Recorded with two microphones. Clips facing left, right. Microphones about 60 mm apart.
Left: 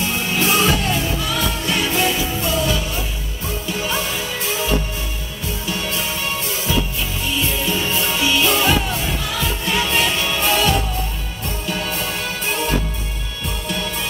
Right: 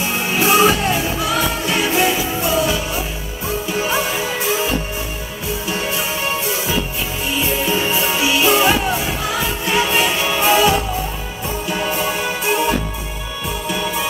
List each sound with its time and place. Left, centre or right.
0.0 s music: centre
5.7 s music: centre
7.2 s music: right